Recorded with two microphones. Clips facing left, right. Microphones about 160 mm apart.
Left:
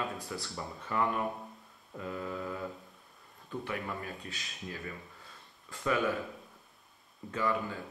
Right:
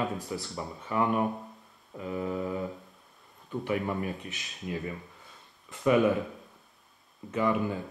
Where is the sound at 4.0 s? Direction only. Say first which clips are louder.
Right 7 dB; 20° right (ahead or behind).